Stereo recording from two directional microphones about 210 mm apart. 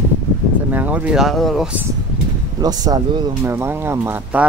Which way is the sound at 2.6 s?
20° right (ahead or behind).